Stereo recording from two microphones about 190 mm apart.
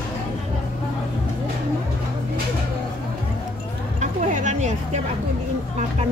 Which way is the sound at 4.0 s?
40° right (ahead or behind).